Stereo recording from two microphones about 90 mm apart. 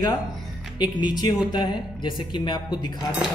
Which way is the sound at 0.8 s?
55° left (ahead or behind).